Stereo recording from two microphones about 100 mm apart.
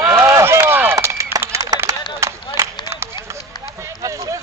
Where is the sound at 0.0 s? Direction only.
25° right (ahead or behind).